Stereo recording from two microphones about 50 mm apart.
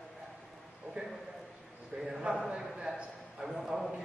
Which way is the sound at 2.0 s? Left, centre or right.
Centre.